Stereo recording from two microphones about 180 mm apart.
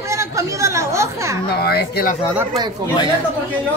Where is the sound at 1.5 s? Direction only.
60° left (ahead or behind).